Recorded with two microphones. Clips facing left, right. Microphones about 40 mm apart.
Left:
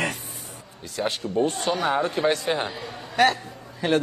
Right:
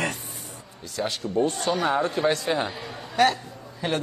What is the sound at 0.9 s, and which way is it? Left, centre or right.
Speech, left.